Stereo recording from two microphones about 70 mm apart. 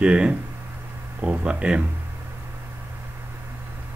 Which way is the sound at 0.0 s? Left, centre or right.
Centre.